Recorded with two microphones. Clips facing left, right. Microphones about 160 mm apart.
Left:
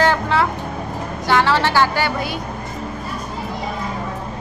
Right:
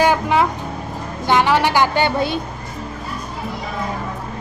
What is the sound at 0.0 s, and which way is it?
Vehicle, 15° right (ahead or behind).